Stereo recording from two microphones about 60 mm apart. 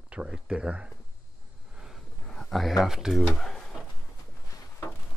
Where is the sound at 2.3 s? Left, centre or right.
Centre.